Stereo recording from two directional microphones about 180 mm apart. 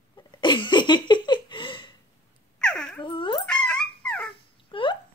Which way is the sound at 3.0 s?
25° left (ahead or behind).